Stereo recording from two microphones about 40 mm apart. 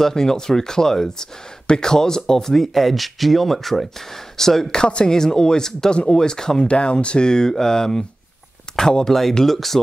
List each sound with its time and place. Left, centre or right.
0.0 s speech: centre
5.9 s speech: left
6.1 s speech: centre
6.7 s speech: left; by 9.8 s centre